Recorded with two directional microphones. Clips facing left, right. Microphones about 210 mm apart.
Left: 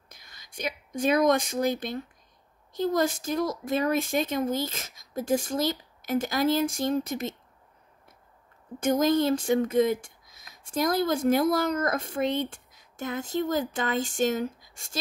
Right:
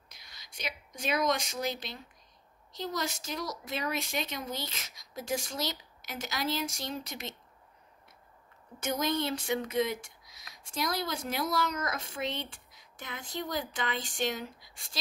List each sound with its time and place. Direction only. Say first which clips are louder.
0.1 s a woman's voice: left 5 dB; 50° left (ahead or behind)
8.8 s a woman's voice: left 9 dB; 50° left (ahead or behind)